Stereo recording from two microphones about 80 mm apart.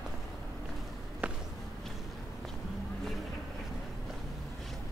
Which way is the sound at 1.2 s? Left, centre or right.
Centre.